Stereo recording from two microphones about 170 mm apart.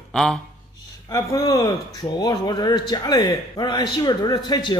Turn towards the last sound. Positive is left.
turn(degrees=25)  # may be behind; listen again after turning